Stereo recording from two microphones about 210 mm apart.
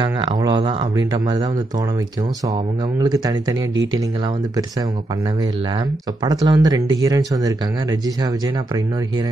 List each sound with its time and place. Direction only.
0.0 s a sound: 20° right (ahead or behind)
3.0 s speech: 15° right (ahead or behind)
3.7 s speech: 65° right (ahead or behind)
6.2 s speech: 20° right (ahead or behind)